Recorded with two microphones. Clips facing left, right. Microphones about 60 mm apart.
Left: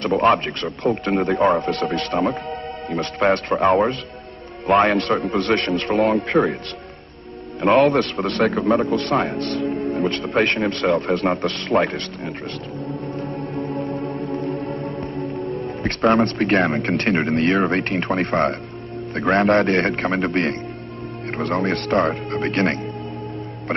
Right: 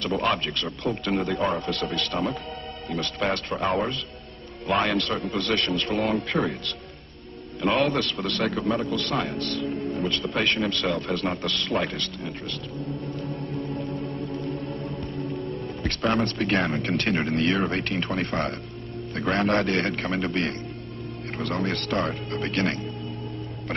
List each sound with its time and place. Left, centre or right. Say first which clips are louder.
0.2 s a man's voice: left 8 dB; left
4.6 s a man's voice: left 8 dB; left
5.9 s a man's voice: left 9 dB; left
7.6 s a man's voice: left 8 dB; left
13.5 s music: left 6 dB; left
14.5 s music: left 6 dB; left
14.8 s music: left 5 dB; left
15.8 s a man's voice: left 8 dB; left